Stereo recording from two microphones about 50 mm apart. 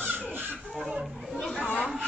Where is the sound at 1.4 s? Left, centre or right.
Centre.